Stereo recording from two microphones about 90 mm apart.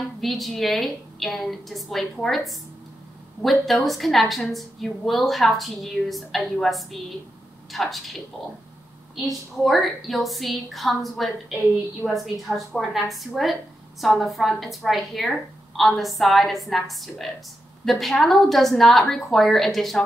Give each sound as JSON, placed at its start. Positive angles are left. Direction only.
{"t": 0.2, "sound": "a woman's voice", "side_deg": 0}